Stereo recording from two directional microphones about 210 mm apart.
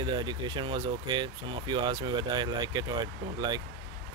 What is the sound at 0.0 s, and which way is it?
Speech, 20° right (ahead or behind).